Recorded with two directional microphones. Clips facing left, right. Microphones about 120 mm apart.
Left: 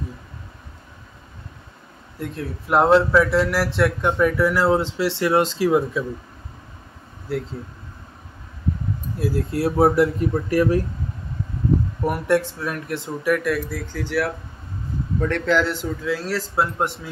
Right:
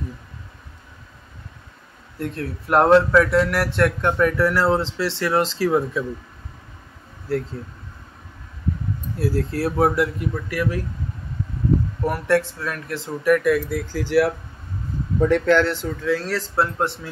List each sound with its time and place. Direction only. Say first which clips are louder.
2.1 s speech: right 2 dB; 10° left (ahead or behind)
9.2 s speech: even; 20° left (ahead or behind); by 10.8 s 40° left (ahead or behind)
12.1 s speech: even; 20° left (ahead or behind)
13.2 s speech: right 4 dB; centre (ahead or behind)
15.4 s speech: right 2 dB; 5° left (ahead or behind)